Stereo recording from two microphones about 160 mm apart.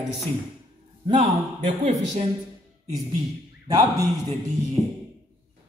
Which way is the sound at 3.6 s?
20° right (ahead or behind).